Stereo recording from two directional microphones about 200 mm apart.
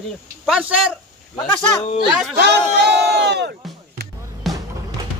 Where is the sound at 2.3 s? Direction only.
55° right (ahead or behind).